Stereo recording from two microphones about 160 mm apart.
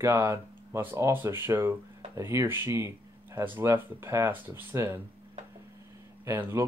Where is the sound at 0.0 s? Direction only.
15° right (ahead or behind).